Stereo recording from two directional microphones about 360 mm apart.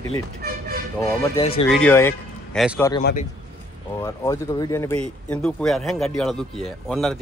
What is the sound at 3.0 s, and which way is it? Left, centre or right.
Speech, left.